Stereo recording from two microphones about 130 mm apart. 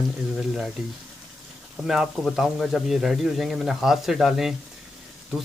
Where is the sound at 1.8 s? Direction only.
Centre (ahead or behind).